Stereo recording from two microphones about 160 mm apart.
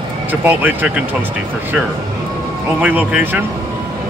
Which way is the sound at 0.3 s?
10° right (ahead or behind).